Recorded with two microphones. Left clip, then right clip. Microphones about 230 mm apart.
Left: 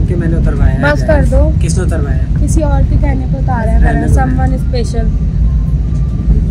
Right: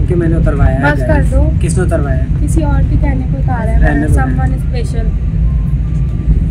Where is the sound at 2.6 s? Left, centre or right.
Centre.